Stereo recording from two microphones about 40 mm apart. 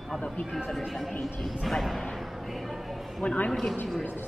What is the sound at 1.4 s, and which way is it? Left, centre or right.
Speech, centre.